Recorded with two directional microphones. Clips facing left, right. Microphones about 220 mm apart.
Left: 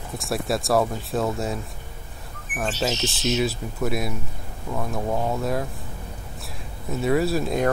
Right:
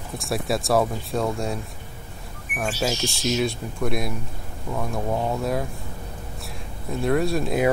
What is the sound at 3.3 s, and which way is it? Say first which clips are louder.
Speech: even; 5° left (ahead or behind).